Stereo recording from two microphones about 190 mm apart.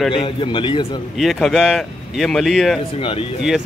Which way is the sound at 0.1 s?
30° left (ahead or behind).